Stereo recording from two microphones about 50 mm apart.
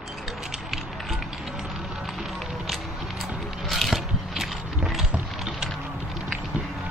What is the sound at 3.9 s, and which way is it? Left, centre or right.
Mechanisms, centre.